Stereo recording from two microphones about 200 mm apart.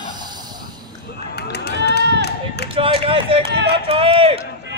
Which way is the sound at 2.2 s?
55° left (ahead or behind).